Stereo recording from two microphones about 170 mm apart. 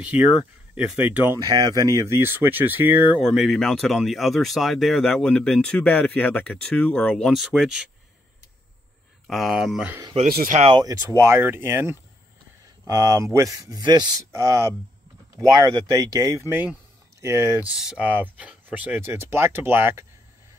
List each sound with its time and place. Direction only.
0.0 s speech: 10° right (ahead or behind)
1.4 s speech: 25° right (ahead or behind)
3.2 s speech: centre (ahead or behind)
9.3 s speech: centre (ahead or behind)
10.2 s speech: 55° right (ahead or behind)
10.8 s speech: 20° right (ahead or behind)
17.7 s speech: 5° right (ahead or behind)